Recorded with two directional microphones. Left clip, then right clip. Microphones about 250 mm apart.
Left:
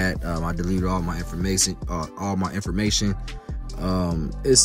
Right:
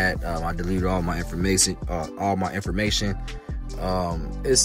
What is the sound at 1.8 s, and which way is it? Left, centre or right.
Speech, left.